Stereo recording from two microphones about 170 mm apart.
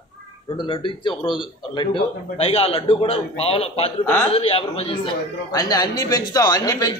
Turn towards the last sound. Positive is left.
turn(degrees=20)  # may be behind; listen again after turning